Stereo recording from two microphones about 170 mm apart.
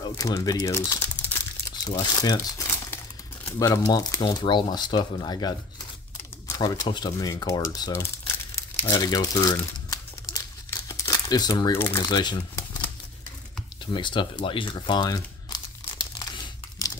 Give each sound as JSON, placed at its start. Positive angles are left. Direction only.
{"t": 0.0, "sound": "speech", "side_deg": 20}
{"t": 8.8, "sound": "crumpling", "side_deg": 25}
{"t": 13.9, "sound": "speech", "side_deg": 25}
{"t": 14.4, "sound": "crumpling", "side_deg": 30}